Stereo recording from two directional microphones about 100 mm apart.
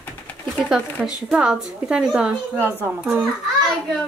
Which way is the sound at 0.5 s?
5° right (ahead or behind).